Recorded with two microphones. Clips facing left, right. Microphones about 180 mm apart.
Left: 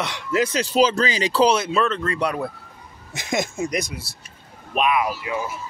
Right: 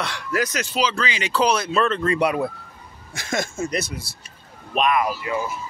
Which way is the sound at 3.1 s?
20° left (ahead or behind).